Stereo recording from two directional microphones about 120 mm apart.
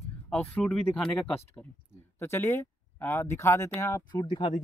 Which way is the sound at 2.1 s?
20° left (ahead or behind).